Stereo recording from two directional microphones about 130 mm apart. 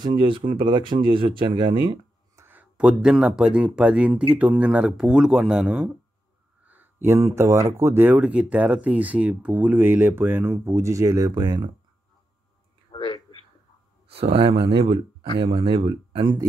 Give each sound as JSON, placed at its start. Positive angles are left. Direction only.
{"t": 0.0, "sound": "speech", "side_deg": -35}
{"t": 2.3, "sound": "speech", "side_deg": -15}
{"t": 12.9, "sound": "a sound", "side_deg": 40}
{"t": 14.0, "sound": "speech", "side_deg": -50}